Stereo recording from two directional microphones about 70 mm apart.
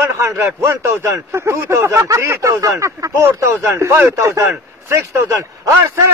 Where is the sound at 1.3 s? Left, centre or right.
Right.